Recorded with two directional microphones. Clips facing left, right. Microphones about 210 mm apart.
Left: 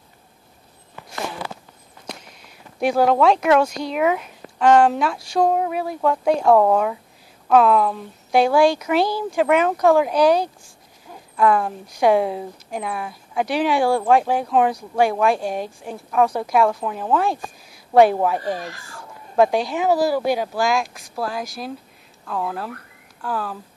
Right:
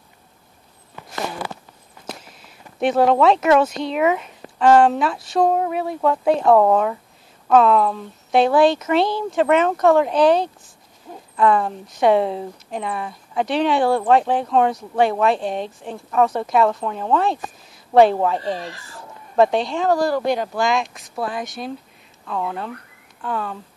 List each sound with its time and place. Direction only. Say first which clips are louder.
2.8 s a woman's voice: right 1 dB; centre (ahead or behind)
18.4 s speech: even; 30° right (ahead or behind)
19.3 s speech: right 1 dB; centre (ahead or behind)